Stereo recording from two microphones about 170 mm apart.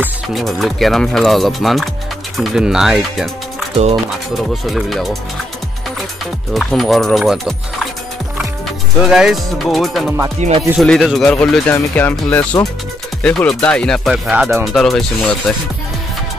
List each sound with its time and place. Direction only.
0.0 s speech: centre (ahead or behind)
4.6 s speech: centre (ahead or behind)
6.5 s speech: centre (ahead or behind)
10.4 s speech: 45° right (ahead or behind)
10.8 s speech: centre (ahead or behind)